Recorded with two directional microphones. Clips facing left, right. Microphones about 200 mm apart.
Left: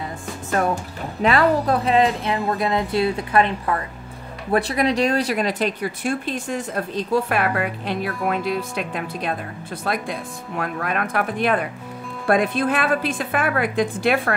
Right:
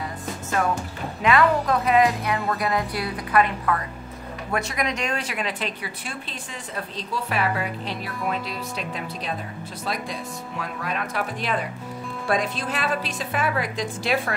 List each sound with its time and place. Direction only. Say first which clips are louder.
1.2 s a woman's voice: left 2 dB; 35° left (ahead or behind); by 14.3 s 55° left (ahead or behind)